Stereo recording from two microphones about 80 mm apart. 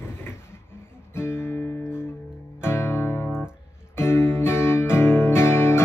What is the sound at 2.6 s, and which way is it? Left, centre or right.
Music, left.